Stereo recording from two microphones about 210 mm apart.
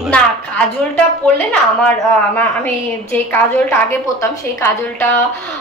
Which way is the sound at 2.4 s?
10° left (ahead or behind).